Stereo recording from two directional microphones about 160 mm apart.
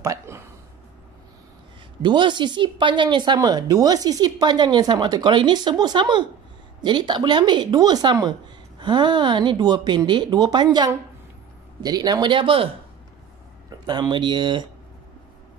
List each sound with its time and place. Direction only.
0.0 s a sound: 15° right (ahead or behind)
2.0 s speech: 30° right (ahead or behind)
13.7 s speech: 25° right (ahead or behind)